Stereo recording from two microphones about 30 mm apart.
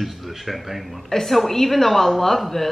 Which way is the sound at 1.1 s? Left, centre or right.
Centre.